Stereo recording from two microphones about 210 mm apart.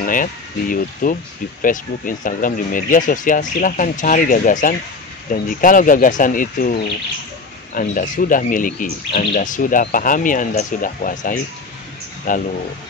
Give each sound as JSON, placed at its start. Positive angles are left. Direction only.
{"t": 0.0, "sound": "speech", "side_deg": 40}